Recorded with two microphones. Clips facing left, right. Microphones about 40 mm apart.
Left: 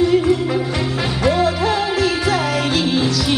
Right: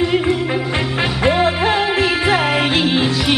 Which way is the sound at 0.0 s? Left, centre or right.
Right.